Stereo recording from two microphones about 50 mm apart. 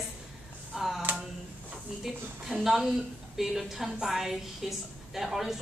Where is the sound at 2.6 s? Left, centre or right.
Centre.